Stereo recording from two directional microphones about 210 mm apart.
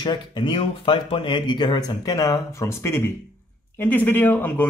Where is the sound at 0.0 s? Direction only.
20° left (ahead or behind).